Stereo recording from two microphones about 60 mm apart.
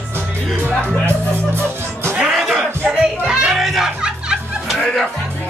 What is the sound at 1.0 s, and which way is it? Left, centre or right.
Speech, right.